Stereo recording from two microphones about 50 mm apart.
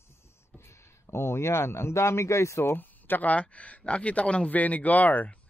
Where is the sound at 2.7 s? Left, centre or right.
Left.